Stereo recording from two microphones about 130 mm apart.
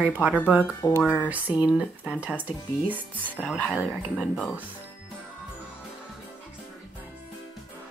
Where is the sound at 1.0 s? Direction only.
15° left (ahead or behind).